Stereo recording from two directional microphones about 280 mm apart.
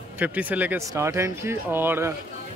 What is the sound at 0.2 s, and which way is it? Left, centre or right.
Speech, centre.